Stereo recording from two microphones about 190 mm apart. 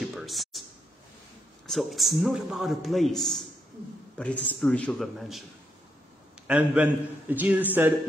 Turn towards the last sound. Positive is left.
turn(degrees=-10)  # may be behind; listen again after turning